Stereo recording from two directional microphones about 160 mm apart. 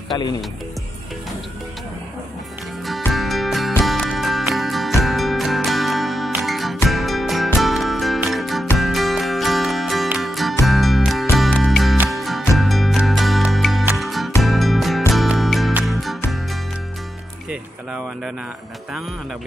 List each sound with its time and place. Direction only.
0.1 s speech: 25° left (ahead or behind)
3.1 s music: centre (ahead or behind)
17.5 s a sound: 5° right (ahead or behind)